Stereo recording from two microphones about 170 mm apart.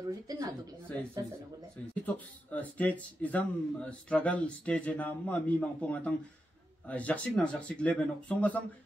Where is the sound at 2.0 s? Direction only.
10° left (ahead or behind).